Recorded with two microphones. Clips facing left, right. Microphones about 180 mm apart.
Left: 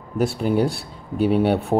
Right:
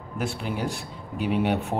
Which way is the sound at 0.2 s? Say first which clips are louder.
Left 9 dB; 40° left (ahead or behind).